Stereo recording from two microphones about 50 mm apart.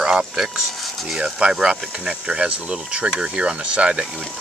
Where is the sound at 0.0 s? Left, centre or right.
Centre.